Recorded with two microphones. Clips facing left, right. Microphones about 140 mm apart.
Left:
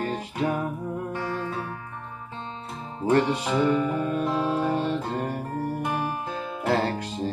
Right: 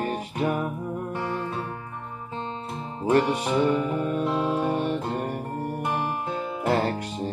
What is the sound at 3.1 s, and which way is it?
Music, 20° right (ahead or behind).